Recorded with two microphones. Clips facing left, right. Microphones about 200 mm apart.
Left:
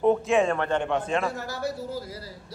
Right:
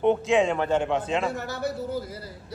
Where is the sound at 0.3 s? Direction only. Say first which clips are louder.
Right 1 dB; centre (ahead or behind).